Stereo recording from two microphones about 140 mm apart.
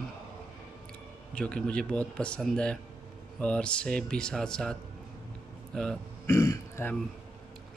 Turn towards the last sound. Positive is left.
turn(degrees=20)  # may be behind; listen again after turning